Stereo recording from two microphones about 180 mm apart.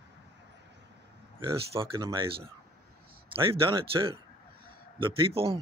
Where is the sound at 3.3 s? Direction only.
30° right (ahead or behind).